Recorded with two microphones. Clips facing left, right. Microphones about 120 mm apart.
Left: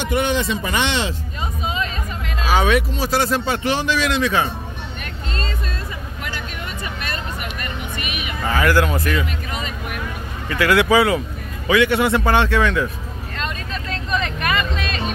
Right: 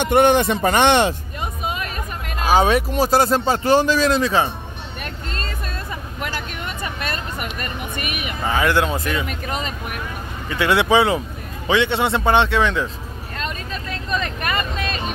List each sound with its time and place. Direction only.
0.0 s speech: 55° right (ahead or behind)
2.3 s music: 40° right (ahead or behind)
2.9 s speech: 45° right (ahead or behind)
8.0 s music: 50° right (ahead or behind)
8.5 s speech: 20° right (ahead or behind)
10.5 s a man's voice: 25° right (ahead or behind)
14.1 s vehicle: 40° right (ahead or behind)